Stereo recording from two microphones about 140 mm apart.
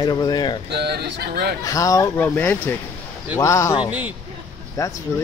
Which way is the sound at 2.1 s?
15° left (ahead or behind).